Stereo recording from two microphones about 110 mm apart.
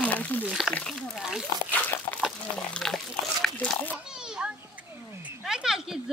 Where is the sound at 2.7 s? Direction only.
5° left (ahead or behind).